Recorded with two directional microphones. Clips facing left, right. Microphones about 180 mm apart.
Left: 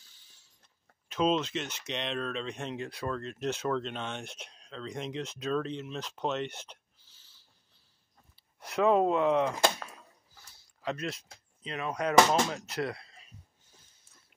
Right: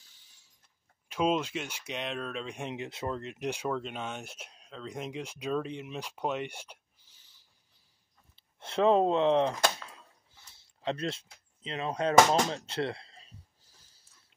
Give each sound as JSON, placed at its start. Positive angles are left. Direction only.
{"t": 1.0, "sound": "speech", "side_deg": -10}
{"t": 8.4, "sound": "speech", "side_deg": -25}
{"t": 9.8, "sound": "a sound", "side_deg": -25}
{"t": 11.6, "sound": "speech", "side_deg": -25}